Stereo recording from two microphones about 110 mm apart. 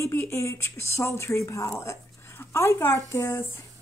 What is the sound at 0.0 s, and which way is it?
Speech, 25° left (ahead or behind).